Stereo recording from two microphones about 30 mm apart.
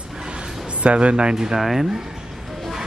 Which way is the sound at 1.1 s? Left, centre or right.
Right.